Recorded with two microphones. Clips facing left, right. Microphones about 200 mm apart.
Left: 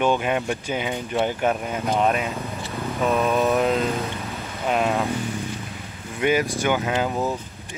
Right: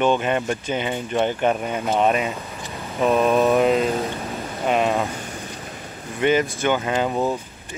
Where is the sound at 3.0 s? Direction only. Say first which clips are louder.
Right 4 dB; 15° right (ahead or behind).